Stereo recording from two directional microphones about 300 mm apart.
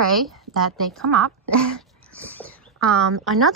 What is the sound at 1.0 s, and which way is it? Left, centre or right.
Speech, right.